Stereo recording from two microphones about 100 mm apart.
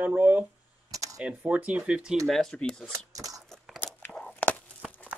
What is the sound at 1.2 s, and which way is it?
Speech, 10° right (ahead or behind).